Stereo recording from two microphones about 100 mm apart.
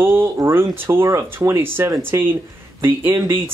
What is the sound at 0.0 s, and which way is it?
Speech, 25° right (ahead or behind).